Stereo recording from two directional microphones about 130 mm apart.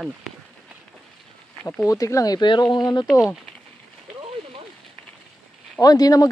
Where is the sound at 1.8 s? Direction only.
25° left (ahead or behind).